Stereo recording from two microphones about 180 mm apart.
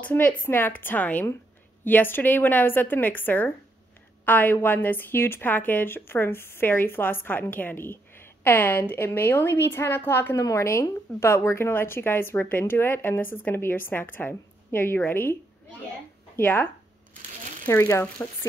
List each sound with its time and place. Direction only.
0.0 s a woman's voice: 10° left (ahead or behind)
16.3 s speech: 10° left (ahead or behind)
17.6 s a woman's voice: 15° left (ahead or behind)